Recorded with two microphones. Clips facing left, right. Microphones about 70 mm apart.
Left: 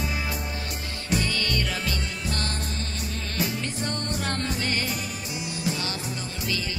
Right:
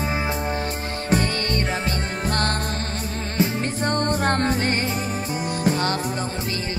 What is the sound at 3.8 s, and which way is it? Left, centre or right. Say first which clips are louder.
Music: right 11 dB; right.